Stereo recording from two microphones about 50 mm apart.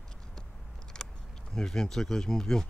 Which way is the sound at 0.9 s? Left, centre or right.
Centre.